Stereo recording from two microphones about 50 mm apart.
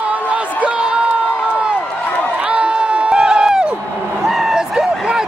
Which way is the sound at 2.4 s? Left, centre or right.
Right.